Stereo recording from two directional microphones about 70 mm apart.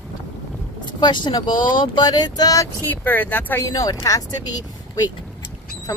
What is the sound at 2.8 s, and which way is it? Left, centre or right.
Speech, left.